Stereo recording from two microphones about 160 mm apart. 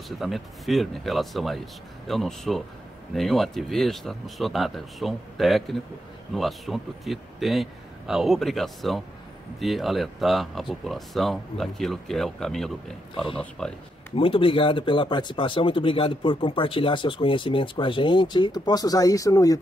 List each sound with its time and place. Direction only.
0.2 s speech: centre (ahead or behind)
13.1 s speech: 30° left (ahead or behind)
13.6 s speech: 5° left (ahead or behind)
14.1 s speech: 35° left (ahead or behind)